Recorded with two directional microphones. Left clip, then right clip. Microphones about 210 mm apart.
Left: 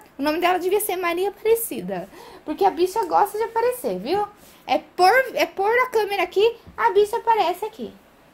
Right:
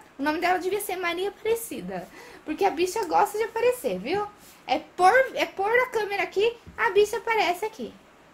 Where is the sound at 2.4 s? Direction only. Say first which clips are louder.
Left 5 dB; 20° left (ahead or behind).